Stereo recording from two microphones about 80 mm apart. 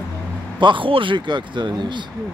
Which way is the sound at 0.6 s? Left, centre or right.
Right.